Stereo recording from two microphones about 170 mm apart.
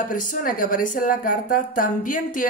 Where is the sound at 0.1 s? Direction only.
50° left (ahead or behind).